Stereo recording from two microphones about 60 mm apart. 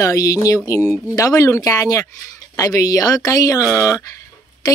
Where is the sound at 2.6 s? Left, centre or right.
Left.